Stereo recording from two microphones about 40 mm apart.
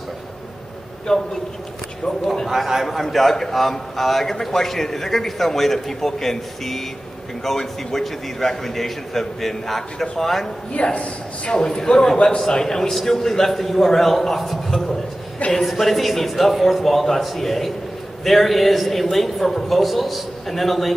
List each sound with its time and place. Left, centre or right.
1.1 s a man's voice: centre
2.4 s a man's voice: centre
10.7 s a man's voice: left; by 20.9 s centre